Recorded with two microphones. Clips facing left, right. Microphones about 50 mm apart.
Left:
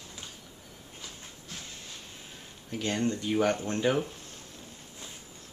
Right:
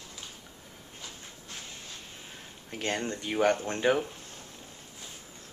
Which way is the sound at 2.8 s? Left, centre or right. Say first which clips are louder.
Left 2 dB; right.